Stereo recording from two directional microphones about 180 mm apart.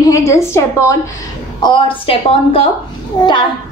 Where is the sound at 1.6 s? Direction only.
30° left (ahead or behind).